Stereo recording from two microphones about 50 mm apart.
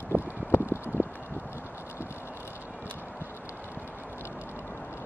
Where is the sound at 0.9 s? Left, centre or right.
Left.